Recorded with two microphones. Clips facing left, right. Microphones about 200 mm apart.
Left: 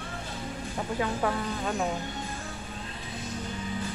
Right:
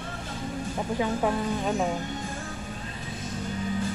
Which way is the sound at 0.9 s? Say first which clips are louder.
Right 3 dB; 15° right (ahead or behind).